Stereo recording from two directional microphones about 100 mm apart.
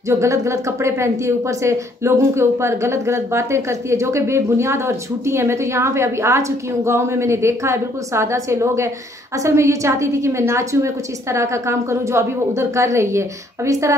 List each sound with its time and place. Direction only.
0.1 s a woman's voice: 30° right (ahead or behind)